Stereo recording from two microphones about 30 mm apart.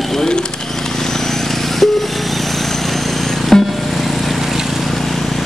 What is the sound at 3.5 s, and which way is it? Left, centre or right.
Music, centre.